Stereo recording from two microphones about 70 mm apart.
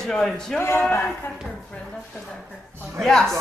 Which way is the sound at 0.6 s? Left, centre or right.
Left.